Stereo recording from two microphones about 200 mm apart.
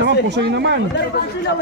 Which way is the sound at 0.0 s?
60° right (ahead or behind).